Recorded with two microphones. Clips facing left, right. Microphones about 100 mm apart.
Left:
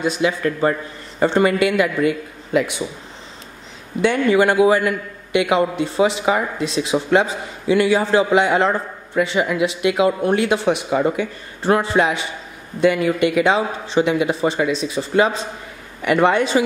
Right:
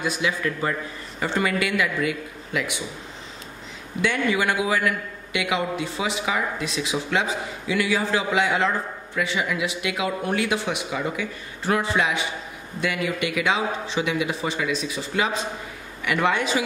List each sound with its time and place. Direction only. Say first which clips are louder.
0.0 s speech: left 7 dB; 25° left (ahead or behind)
0.4 s a man's voice: left 7 dB; 40° left (ahead or behind)
4.0 s a man's voice: left 7 dB; 35° left (ahead or behind)